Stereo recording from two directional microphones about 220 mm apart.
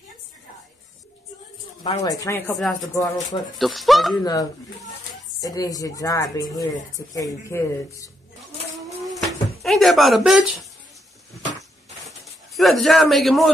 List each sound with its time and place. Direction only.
1.8 s speech: 20° left (ahead or behind); by 2.9 s centre (ahead or behind)
2.9 s speech: 15° left (ahead or behind)
3.5 s speech: centre (ahead or behind)
4.2 s speech: 15° left (ahead or behind)
9.0 s a sound: centre (ahead or behind)
12.1 s speech: centre (ahead or behind)